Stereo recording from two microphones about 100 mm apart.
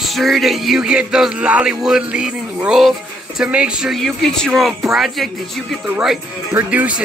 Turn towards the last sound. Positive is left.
turn(degrees=-15)  # may be behind; listen again after turning